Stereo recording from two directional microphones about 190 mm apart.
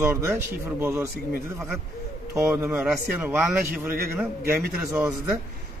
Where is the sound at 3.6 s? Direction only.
55° right (ahead or behind).